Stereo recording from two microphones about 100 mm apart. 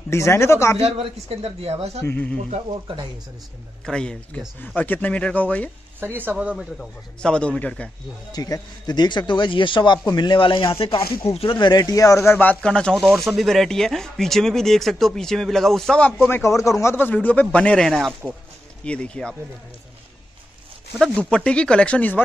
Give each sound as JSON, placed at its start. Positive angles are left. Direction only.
{"t": 0.1, "sound": "speech", "side_deg": 25}
{"t": 0.7, "sound": "speech", "side_deg": -90}
{"t": 2.0, "sound": "speech", "side_deg": 15}
{"t": 3.8, "sound": "speech", "side_deg": 10}
{"t": 5.9, "sound": "speech", "side_deg": -20}
{"t": 6.3, "sound": "speech", "side_deg": -10}
{"t": 6.8, "sound": "speech", "side_deg": 10}
{"t": 8.3, "sound": "speech", "side_deg": 40}
{"t": 12.6, "sound": "speech", "side_deg": 10}
{"t": 16.1, "sound": "speech", "side_deg": 20}
{"t": 16.9, "sound": "speech", "side_deg": 15}
{"t": 21.0, "sound": "speech", "side_deg": 10}